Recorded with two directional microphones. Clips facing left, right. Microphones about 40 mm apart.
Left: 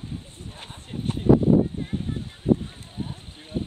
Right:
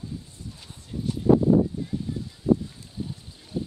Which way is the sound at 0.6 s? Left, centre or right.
Left.